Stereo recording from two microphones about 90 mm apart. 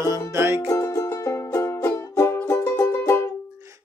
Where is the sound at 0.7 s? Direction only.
35° left (ahead or behind).